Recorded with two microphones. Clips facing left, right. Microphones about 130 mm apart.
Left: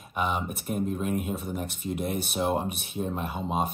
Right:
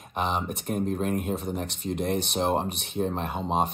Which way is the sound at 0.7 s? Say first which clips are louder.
Right 1 dB; 45° right (ahead or behind).